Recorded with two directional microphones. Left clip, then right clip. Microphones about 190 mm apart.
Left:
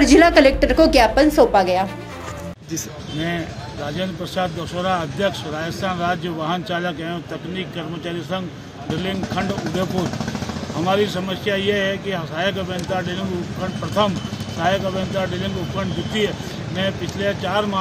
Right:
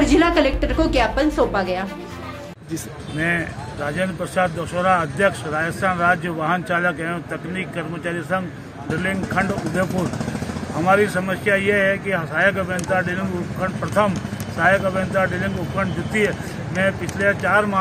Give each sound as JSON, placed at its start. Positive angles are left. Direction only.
{"t": 0.0, "sound": "speech", "side_deg": 15}
{"t": 10.9, "sound": "speech", "side_deg": 5}
{"t": 16.7, "sound": "speech", "side_deg": 10}